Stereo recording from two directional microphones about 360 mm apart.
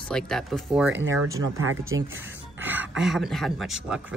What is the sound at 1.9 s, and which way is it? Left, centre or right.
Speech, right.